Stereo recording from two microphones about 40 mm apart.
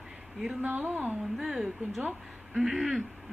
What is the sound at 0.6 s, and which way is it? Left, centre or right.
Speech, right.